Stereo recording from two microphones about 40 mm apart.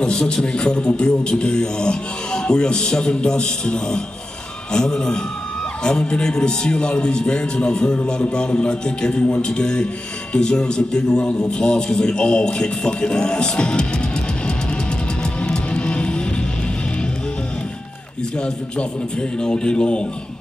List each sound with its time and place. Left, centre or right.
0.0 s a man's voice: centre
15.4 s music: left
18.4 s a man's voice: left